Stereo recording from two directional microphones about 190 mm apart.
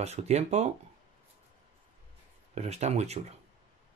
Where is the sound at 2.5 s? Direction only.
35° right (ahead or behind).